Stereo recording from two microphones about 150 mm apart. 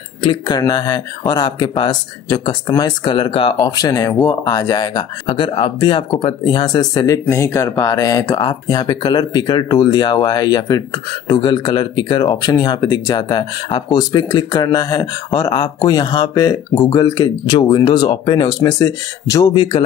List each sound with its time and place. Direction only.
0.2 s speech: 30° left (ahead or behind)